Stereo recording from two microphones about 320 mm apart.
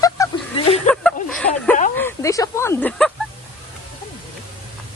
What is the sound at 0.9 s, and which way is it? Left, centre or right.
Speech, centre.